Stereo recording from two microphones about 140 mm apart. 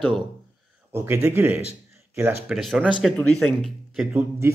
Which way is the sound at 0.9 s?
15° right (ahead or behind).